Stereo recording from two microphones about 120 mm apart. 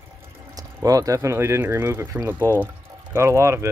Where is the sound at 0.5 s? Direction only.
30° right (ahead or behind).